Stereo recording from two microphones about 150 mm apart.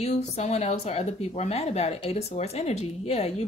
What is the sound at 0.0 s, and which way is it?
Speech, 45° left (ahead or behind).